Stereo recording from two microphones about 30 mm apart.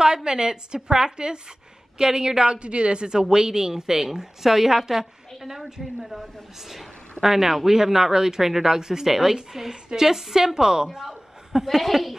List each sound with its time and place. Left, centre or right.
0.0 s a woman's voice: right
2.6 s speech: right; by 5.7 s centre
6.7 s a woman's voice: centre
11.6 s speech: centre